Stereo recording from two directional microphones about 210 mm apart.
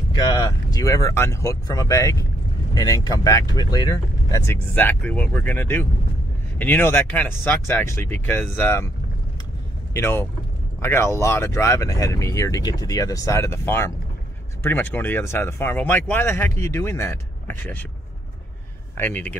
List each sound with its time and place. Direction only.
0.1 s speech: 20° left (ahead or behind)
9.9 s speech: 10° left (ahead or behind)
18.9 s speech: 10° left (ahead or behind)